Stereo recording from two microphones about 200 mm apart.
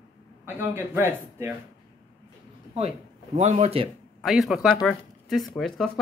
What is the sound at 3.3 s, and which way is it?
Speech, 35° right (ahead or behind).